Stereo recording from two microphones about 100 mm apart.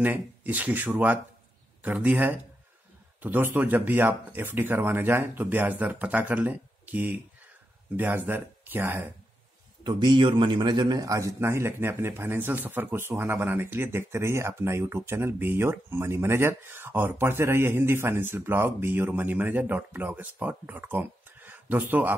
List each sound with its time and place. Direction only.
0.0 s a man's voice: 15° right (ahead or behind)
9.8 s a man's voice: 45° right (ahead or behind); by 22.1 s 20° right (ahead or behind)